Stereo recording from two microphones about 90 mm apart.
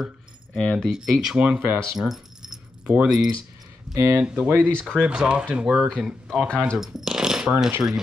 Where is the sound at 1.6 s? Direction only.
25° right (ahead or behind).